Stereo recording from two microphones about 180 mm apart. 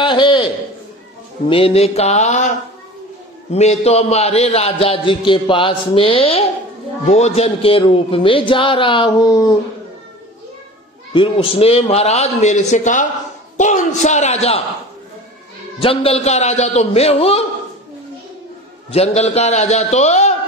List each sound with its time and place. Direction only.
0.0 s a sound: 25° left (ahead or behind)
1.5 s a man's voice: 30° left (ahead or behind)
3.5 s a man's voice: 35° left (ahead or behind)
11.1 s a man's voice: 30° left (ahead or behind)
15.8 s a man's voice: 30° left (ahead or behind)
18.9 s a man's voice: 35° left (ahead or behind)